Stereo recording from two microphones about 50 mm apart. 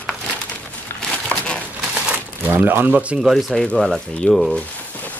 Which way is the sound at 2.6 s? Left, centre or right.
Right.